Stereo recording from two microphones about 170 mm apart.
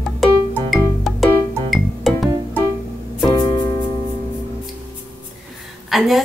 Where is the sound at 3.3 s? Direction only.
25° left (ahead or behind).